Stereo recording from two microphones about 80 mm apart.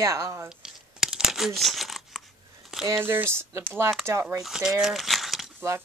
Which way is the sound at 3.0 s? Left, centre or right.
Right.